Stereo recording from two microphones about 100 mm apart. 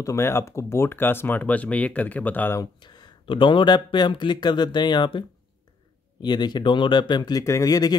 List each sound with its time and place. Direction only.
0.0 s speech: 30° left (ahead or behind)
2.6 s speech: 45° left (ahead or behind)
6.2 s speech: 45° left (ahead or behind)
7.4 s speech: 35° left (ahead or behind)